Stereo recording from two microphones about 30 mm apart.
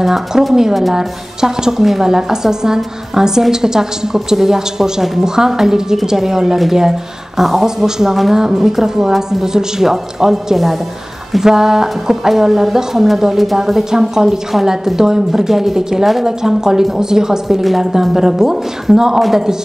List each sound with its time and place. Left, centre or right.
0.0 s a woman's voice: centre
7.6 s a woman's voice: centre
17.6 s speech: centre